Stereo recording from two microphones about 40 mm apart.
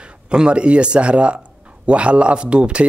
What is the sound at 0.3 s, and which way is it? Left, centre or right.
Speech, right.